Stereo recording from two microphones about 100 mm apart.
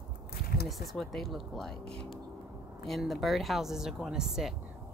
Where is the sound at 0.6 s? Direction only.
Centre (ahead or behind).